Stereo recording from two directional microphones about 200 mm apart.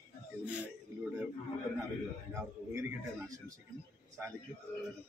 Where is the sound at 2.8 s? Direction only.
15° right (ahead or behind).